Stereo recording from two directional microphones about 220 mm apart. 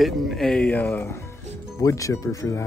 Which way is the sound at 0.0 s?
Centre (ahead or behind).